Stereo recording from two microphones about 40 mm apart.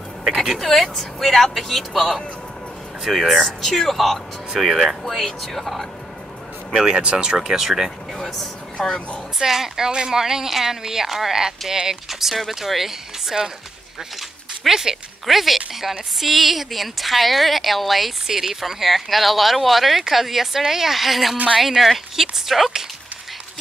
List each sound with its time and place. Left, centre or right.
0.7 s speech: centre
3.4 s speech: centre
6.7 s speech: centre
7.0 s speech: right
7.3 s speech: centre
8.1 s speech: centre
9.4 s speech: centre
14.7 s speech: centre
15.2 s speech: centre